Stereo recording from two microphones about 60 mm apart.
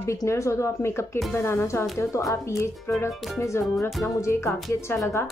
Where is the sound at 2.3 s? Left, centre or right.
Left.